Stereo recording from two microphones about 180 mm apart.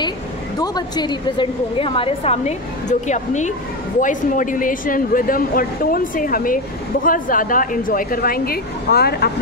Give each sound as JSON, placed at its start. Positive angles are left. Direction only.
{"t": 0.6, "sound": "a woman's voice", "side_deg": 25}